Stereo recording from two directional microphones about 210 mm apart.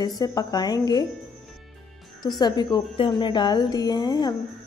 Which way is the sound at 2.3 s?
20° left (ahead or behind).